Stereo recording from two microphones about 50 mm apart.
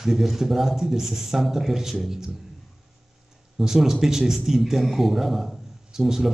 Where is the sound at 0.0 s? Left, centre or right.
Centre.